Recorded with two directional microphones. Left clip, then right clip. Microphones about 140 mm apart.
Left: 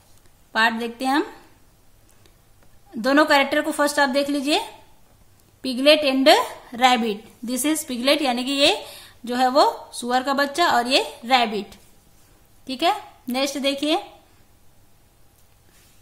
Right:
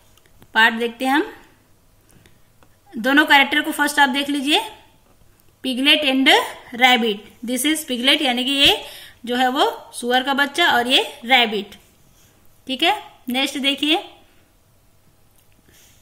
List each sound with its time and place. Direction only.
0.5 s speech: 30° left (ahead or behind)
2.9 s a woman's voice: 30° left (ahead or behind)
12.6 s speech: 30° left (ahead or behind)